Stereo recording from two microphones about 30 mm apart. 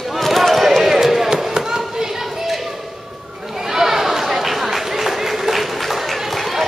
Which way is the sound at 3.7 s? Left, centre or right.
Centre.